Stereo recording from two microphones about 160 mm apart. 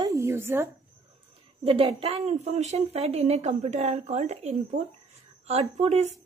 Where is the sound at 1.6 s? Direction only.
35° right (ahead or behind).